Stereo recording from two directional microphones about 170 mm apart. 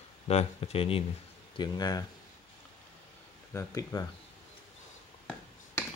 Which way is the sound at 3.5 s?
20° left (ahead or behind).